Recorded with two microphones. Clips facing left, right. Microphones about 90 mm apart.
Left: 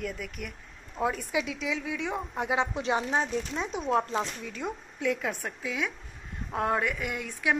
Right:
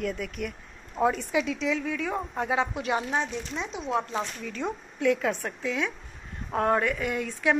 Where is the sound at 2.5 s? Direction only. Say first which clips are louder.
Even; 25° left (ahead or behind).